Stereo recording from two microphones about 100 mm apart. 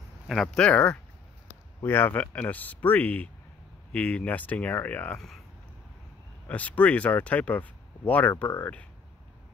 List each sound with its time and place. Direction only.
0.3 s speech: centre (ahead or behind)
0.7 s speech: 10° left (ahead or behind)
6.4 s speech: 15° left (ahead or behind)